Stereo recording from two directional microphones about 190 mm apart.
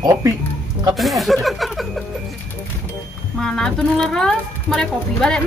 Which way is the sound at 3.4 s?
5° left (ahead or behind).